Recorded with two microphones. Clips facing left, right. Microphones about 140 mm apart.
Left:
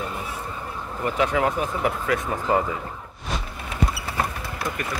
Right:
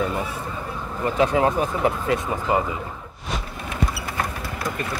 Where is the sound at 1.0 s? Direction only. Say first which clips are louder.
Right 3 dB; 30° right (ahead or behind).